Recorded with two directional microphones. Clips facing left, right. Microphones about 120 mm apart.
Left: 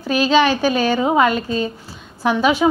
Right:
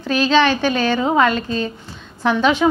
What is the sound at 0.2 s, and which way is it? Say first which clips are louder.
A woman's voice: even; 10° left (ahead or behind).